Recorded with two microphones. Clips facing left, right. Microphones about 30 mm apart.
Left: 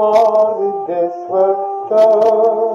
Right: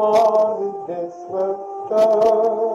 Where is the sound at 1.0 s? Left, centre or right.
Left.